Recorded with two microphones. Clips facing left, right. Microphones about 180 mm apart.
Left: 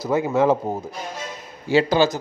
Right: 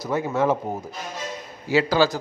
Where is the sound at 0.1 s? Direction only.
25° left (ahead or behind).